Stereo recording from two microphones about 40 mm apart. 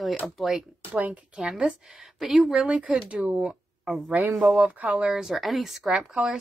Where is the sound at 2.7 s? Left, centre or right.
Right.